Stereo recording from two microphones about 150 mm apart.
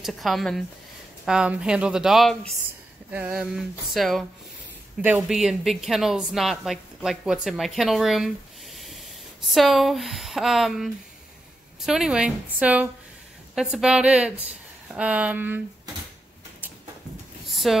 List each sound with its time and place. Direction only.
0.0 s a woman's voice: centre (ahead or behind)
5.3 s a woman's voice: 5° right (ahead or behind)
8.7 s rub: centre (ahead or behind)
9.5 s a woman's voice: centre (ahead or behind)
17.5 s vehicle: centre (ahead or behind)